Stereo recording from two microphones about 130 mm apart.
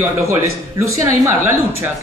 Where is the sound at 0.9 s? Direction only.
25° right (ahead or behind).